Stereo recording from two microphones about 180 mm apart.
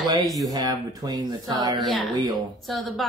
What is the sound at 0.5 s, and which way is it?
Speech, 20° right (ahead or behind).